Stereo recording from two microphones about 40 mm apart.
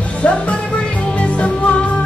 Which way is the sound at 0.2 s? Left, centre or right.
Left.